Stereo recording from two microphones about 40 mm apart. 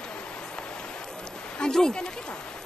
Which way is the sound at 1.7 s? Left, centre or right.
Centre.